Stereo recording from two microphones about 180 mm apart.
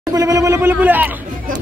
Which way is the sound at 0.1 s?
20° right (ahead or behind).